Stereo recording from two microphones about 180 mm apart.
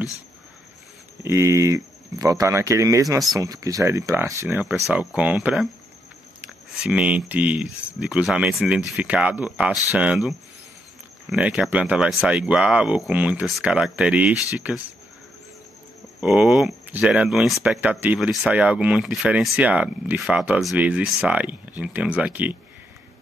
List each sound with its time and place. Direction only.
1.2 s speech: 15° right (ahead or behind)
16.2 s speech: 5° right (ahead or behind)